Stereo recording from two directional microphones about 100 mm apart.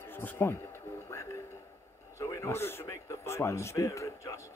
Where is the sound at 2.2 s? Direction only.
30° left (ahead or behind).